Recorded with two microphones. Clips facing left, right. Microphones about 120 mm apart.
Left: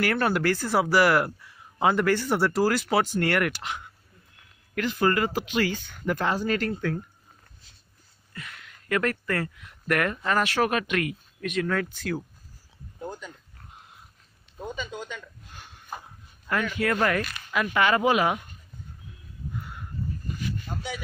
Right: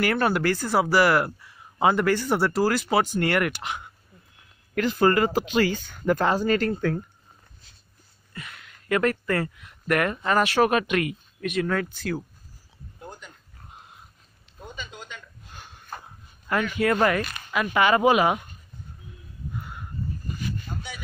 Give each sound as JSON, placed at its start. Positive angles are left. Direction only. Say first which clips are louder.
{"t": 0.0, "sound": "speech", "louder": "right 1 dB", "side_deg": -10}
{"t": 4.7, "sound": "speech", "louder": "right 4 dB", "side_deg": -35}
{"t": 8.4, "sound": "speech", "louder": "right 1 dB", "side_deg": -15}
{"t": 15.9, "sound": "a sound", "louder": "left 1 dB", "side_deg": 15}
{"t": 16.4, "sound": "speech", "louder": "right 3 dB", "side_deg": -20}